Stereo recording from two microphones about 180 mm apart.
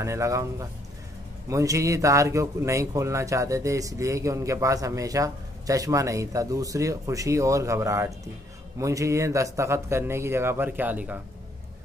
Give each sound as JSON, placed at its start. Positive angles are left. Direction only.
{"t": 0.0, "sound": "speech", "side_deg": -15}